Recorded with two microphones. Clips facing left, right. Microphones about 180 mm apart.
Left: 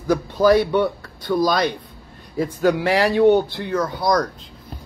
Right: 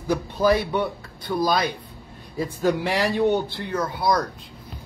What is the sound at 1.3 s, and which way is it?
Speech, 10° right (ahead or behind).